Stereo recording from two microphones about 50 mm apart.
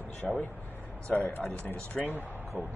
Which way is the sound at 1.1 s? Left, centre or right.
Left.